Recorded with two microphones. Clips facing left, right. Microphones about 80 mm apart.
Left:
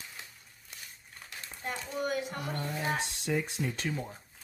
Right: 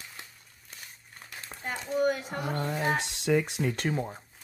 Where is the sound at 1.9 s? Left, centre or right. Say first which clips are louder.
Right 7 dB; right.